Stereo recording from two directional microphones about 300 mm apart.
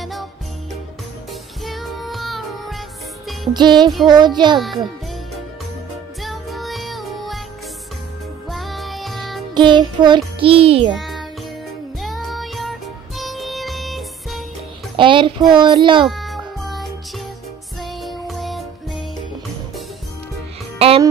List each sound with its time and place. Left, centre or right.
0.0 s jingle bell: centre
1.6 s music: centre
3.5 s music: centre
4.6 s a child's voice: centre
6.2 s music: centre
8.5 s music: centre
9.5 s music: centre
10.9 s music: centre
15.0 s music: centre
16.1 s music: centre
20.8 s music: centre